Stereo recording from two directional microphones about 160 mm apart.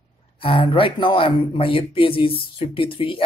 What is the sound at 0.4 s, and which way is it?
Speech, 35° left (ahead or behind).